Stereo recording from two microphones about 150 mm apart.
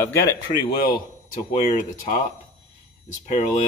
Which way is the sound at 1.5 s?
50° left (ahead or behind).